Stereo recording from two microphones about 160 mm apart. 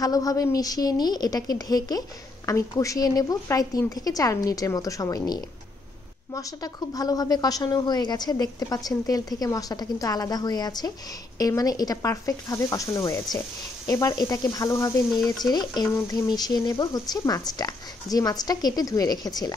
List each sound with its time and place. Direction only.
0.0 s a woman's voice: 20° left (ahead or behind)